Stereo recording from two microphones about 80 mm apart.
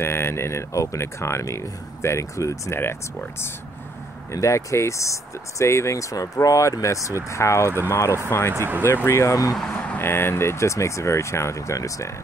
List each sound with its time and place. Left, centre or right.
0.0 s speech: left
4.3 s speech: left
9.6 s speech: centre
9.9 s speech: left